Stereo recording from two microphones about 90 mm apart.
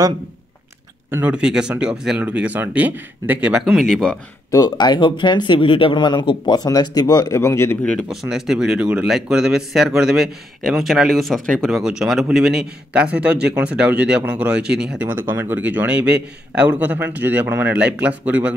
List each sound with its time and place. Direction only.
1.2 s a man's voice: 10° right (ahead or behind)
3.8 s speech: 10° left (ahead or behind)
4.5 s speech: 45° left (ahead or behind)
7.3 s speech: 30° left (ahead or behind)
8.1 s a man's voice: 5° right (ahead or behind)
11.8 s a man's voice: 5° right (ahead or behind)
15.2 s a man's voice: 25° right (ahead or behind)